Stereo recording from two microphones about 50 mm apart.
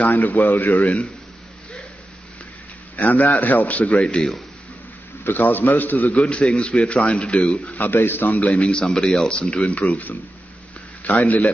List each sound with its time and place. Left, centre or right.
0.0 s a man's voice: left
3.0 s a man's voice: left
5.2 s a man's voice: left
6.2 s speech: left
7.8 s a man's voice: left
8.3 s speech: left
8.8 s speech: centre
9.1 s speech: left
9.7 s a man's voice: left